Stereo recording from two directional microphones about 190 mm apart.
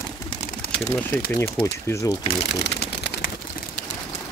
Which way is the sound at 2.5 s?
60° left (ahead or behind).